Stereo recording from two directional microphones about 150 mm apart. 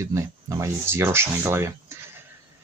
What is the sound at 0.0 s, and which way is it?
Speech, 20° right (ahead or behind).